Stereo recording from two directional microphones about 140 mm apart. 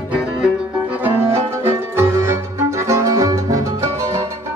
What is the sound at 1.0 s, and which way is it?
Music, 15° right (ahead or behind).